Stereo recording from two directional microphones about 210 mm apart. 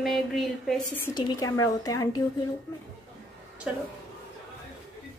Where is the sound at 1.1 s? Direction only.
20° left (ahead or behind).